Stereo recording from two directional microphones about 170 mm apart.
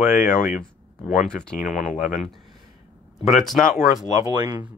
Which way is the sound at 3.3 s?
Centre (ahead or behind).